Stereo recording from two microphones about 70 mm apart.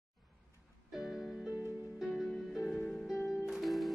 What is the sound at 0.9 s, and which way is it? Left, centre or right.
Music, centre.